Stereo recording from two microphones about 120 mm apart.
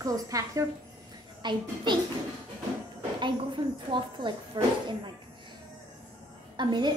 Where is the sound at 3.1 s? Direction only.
40° right (ahead or behind).